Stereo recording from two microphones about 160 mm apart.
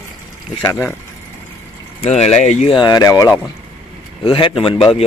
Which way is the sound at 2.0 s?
45° left (ahead or behind).